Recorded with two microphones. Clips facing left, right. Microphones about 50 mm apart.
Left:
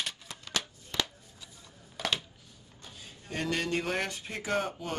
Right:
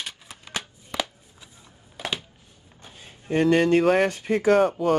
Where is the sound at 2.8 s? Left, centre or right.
Right.